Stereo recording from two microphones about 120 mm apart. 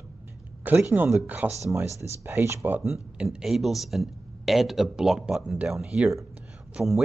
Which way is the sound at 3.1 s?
5° right (ahead or behind).